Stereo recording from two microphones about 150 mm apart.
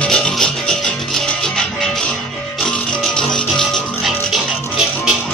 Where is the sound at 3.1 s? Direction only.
5° left (ahead or behind).